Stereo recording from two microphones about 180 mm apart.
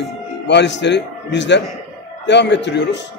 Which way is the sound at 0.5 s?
75° left (ahead or behind).